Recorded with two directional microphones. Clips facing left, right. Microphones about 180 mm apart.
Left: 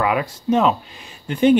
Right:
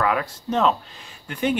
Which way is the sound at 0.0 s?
15° left (ahead or behind).